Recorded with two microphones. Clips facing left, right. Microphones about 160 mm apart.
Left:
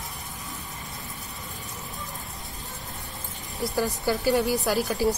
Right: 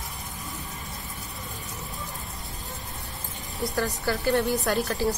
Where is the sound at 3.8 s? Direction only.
15° left (ahead or behind).